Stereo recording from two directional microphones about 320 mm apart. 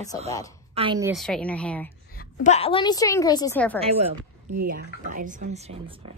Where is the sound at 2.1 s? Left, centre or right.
Left; by 3.8 s centre.